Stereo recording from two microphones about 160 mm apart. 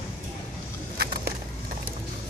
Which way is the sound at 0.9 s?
75° right (ahead or behind).